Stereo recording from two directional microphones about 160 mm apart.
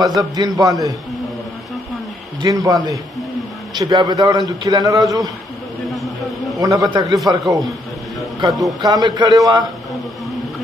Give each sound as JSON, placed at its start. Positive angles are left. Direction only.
{"t": 0.0, "sound": "a man's voice", "side_deg": -20}
{"t": 2.4, "sound": "a man's voice", "side_deg": -20}
{"t": 5.9, "sound": "a sound", "side_deg": 0}
{"t": 6.6, "sound": "a man's voice", "side_deg": -20}
{"t": 8.8, "sound": "a man's voice", "side_deg": -25}